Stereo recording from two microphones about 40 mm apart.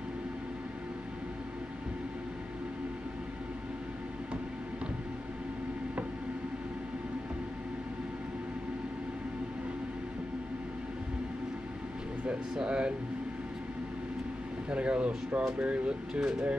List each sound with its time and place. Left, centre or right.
12.5 s speech: right
14.7 s speech: right